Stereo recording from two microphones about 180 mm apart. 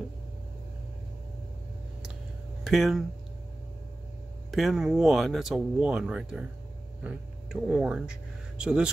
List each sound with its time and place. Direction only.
2.6 s speech: centre (ahead or behind)
4.5 s speech: centre (ahead or behind)